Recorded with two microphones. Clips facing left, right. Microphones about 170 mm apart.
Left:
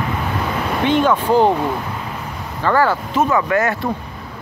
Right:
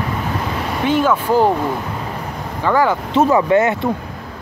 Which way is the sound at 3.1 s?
25° right (ahead or behind).